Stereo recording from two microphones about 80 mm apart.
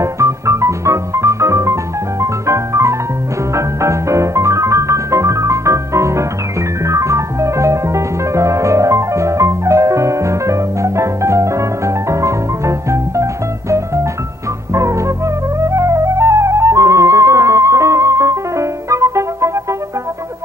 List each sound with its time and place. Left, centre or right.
0.0 s music: right
15.6 s flute: right